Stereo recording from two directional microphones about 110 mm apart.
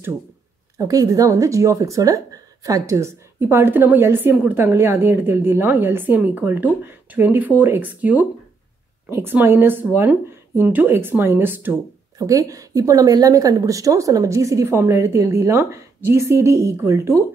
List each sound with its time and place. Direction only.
0.7 s speech: 30° right (ahead or behind)
12.2 s speech: 30° right (ahead or behind)